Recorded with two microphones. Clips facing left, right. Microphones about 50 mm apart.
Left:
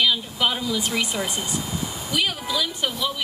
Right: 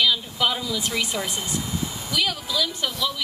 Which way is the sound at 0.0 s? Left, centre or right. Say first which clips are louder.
Even; centre.